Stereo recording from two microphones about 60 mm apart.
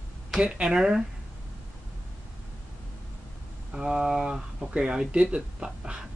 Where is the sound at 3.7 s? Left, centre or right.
Centre.